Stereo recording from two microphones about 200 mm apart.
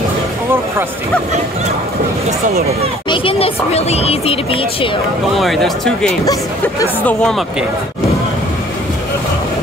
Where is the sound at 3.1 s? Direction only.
30° left (ahead or behind).